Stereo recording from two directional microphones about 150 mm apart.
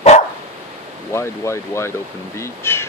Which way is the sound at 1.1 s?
20° left (ahead or behind).